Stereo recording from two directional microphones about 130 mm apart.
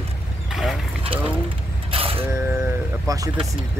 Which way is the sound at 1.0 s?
45° right (ahead or behind).